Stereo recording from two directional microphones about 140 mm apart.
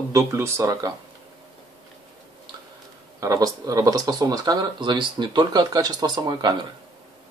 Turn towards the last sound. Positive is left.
turn(degrees=-35)  # may be behind; listen again after turning